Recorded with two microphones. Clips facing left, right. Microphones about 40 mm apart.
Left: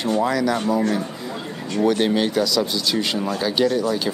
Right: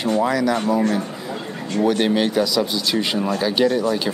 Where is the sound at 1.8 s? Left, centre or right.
Centre.